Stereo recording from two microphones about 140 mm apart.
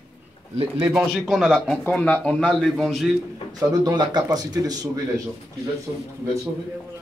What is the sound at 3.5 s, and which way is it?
A man's voice, 25° right (ahead or behind).